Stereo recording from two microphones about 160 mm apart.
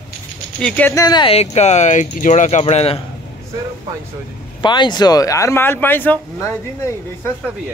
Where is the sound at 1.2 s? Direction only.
40° left (ahead or behind).